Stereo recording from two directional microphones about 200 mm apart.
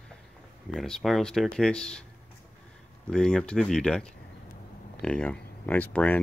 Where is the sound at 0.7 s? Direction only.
Centre (ahead or behind).